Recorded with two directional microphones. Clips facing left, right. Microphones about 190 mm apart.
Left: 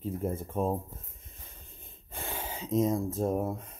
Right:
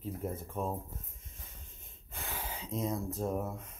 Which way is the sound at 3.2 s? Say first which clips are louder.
Left 5 dB; 30° left (ahead or behind).